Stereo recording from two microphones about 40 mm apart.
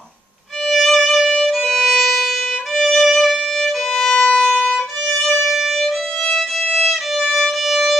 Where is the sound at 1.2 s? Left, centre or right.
Centre.